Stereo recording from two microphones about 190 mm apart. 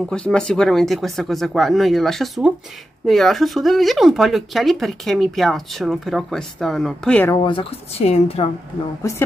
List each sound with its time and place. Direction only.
0.1 s speech: 5° left (ahead or behind)
7.4 s a woman's voice: 30° left (ahead or behind)